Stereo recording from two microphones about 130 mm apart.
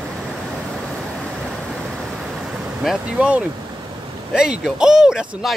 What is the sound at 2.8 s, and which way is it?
Speech, 5° right (ahead or behind).